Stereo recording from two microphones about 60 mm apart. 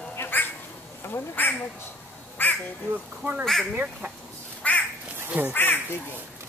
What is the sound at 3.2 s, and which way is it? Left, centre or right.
Speech, right.